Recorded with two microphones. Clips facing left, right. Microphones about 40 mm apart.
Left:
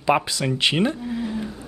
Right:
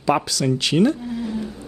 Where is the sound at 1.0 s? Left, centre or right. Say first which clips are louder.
Right 1 dB; centre.